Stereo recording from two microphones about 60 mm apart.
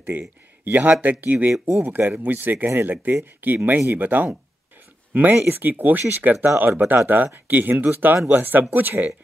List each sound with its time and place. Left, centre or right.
0.0 s speech: right